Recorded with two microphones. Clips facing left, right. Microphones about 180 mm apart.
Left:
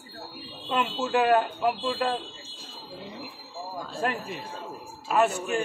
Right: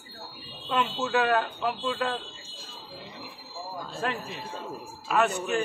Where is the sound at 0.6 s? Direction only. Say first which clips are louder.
Even; 5° left (ahead or behind).